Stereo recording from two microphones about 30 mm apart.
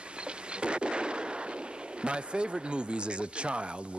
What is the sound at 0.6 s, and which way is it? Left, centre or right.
Artillery fire, right.